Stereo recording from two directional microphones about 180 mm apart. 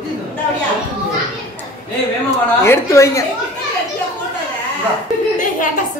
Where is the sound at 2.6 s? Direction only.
15° left (ahead or behind).